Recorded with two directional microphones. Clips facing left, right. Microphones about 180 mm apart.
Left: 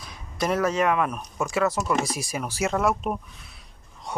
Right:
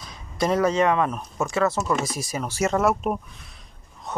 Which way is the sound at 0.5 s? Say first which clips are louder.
Right 2 dB; centre (ahead or behind).